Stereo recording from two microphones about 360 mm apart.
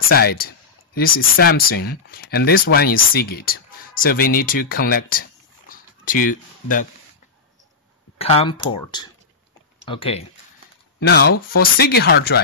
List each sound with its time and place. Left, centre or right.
0.1 s speech: left
5.7 s a sound: left
8.2 s speech: centre
11.0 s speech: left
11.3 s speech: left
11.8 s speech: left